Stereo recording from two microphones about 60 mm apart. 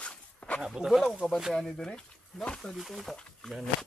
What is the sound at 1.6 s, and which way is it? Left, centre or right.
Speech, centre.